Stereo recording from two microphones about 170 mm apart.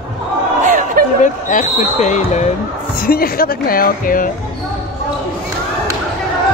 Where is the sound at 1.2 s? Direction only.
50° left (ahead or behind).